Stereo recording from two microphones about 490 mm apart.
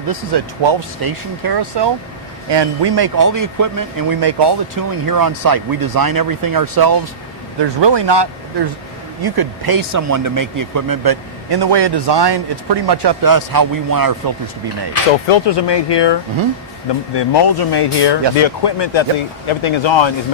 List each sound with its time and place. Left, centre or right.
0.1 s speech: right
3.2 s speech: right
7.6 s speech: right
15.2 s speech: left